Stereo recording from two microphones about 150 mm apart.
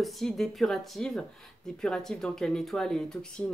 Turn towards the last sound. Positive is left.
turn(degrees=5)  # may be behind; listen again after turning